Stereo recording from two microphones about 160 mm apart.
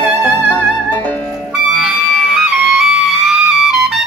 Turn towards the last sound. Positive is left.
turn(degrees=0)  # may be behind; listen again after turning